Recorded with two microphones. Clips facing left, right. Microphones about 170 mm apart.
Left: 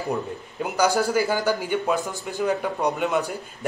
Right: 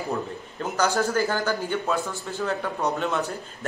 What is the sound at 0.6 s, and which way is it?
A man's voice, 10° left (ahead or behind).